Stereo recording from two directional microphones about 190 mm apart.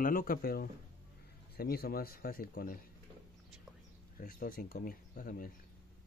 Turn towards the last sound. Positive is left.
turn(degrees=45)  # may be behind; listen again after turning